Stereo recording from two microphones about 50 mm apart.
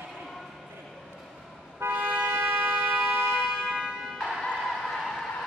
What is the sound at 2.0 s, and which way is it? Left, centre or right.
Music, right.